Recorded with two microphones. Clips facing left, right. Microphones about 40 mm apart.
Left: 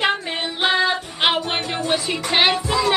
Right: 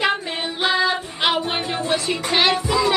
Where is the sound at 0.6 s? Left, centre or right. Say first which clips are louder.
Left 1 dB; centre.